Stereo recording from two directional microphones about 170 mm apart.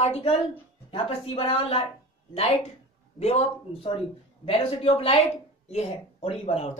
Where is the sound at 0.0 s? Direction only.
35° left (ahead or behind).